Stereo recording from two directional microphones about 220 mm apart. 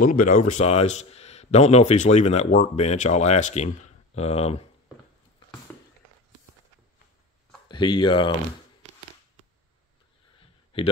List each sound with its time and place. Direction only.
0.0 s a man's voice: 40° left (ahead or behind)
7.6 s speech: 20° left (ahead or behind)
10.7 s speech: 25° left (ahead or behind)